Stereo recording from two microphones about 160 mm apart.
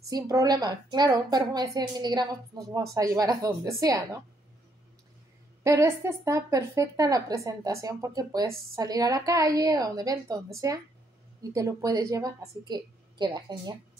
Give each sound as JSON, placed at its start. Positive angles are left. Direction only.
{"t": 0.1, "sound": "a woman's voice", "side_deg": -25}
{"t": 5.6, "sound": "a woman's voice", "side_deg": -15}